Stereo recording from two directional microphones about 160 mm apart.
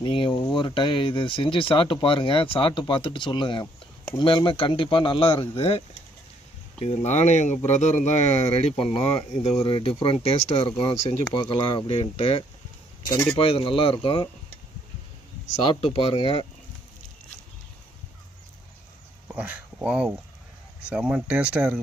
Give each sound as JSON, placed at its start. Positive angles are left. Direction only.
{"t": 0.0, "sound": "speech", "side_deg": 30}
{"t": 8.9, "sound": "speech", "side_deg": 35}
{"t": 15.6, "sound": "speech", "side_deg": 35}
{"t": 19.2, "sound": "speech", "side_deg": -10}